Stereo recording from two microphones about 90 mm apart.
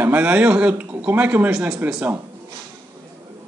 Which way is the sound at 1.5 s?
5° right (ahead or behind).